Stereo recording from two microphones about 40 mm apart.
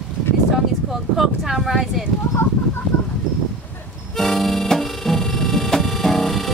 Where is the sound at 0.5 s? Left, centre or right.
Centre.